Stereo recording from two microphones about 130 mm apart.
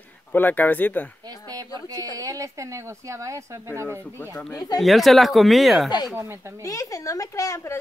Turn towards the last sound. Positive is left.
turn(degrees=25)  # may be behind; listen again after turning